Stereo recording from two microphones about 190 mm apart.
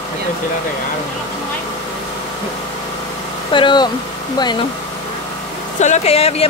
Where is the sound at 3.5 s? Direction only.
25° left (ahead or behind).